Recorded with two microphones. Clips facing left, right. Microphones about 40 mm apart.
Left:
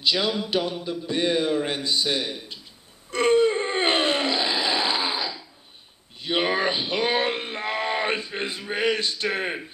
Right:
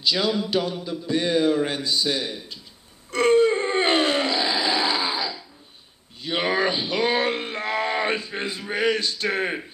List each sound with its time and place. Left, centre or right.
0.0 s speech: left
3.1 s wail: left
3.5 s a sound: left
6.2 s speech: left